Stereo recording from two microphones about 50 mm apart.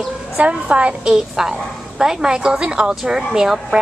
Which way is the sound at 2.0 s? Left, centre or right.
Centre.